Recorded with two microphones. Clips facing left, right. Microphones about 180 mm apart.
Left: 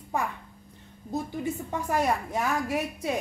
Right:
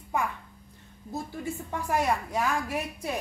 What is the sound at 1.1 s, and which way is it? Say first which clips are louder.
Speech: left 4 dB; 20° left (ahead or behind).